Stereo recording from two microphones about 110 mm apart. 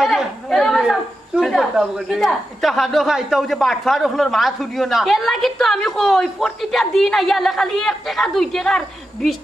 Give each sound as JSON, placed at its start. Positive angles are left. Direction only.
{"t": 0.0, "sound": "chatter", "side_deg": 0}
{"t": 0.7, "sound": "speech", "side_deg": -5}